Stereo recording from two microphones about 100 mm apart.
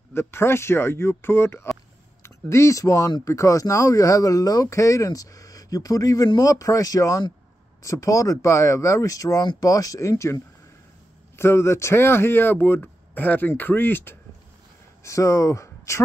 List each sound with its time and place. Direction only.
0.1 s speech: 25° left (ahead or behind)
15.0 s speech: 30° left (ahead or behind)